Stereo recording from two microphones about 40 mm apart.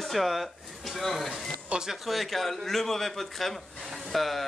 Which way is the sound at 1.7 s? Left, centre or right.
Right.